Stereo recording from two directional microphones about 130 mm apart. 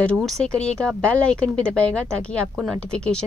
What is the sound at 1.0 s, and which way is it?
Speech, 10° left (ahead or behind).